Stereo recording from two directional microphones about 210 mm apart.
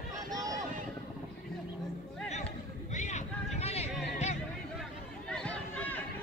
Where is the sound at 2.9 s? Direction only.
35° left (ahead or behind).